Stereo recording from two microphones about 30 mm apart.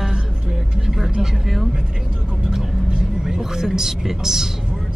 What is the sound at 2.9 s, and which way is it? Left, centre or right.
Vehicle, right.